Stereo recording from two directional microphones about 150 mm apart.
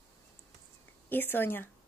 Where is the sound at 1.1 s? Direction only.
15° left (ahead or behind).